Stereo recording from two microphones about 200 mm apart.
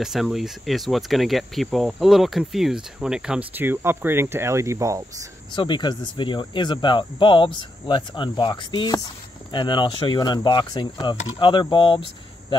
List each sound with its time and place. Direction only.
0.0 s speech: centre (ahead or behind)
5.5 s speech: 20° left (ahead or behind)